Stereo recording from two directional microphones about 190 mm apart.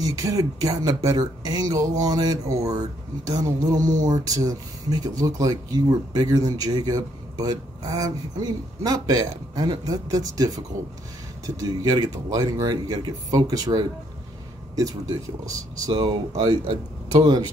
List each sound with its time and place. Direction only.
0.0 s speech: 20° right (ahead or behind)
15.9 s speech: 25° right (ahead or behind)